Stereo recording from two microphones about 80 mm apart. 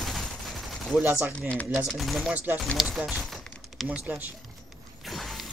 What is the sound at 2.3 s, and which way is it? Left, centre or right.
Speech, centre.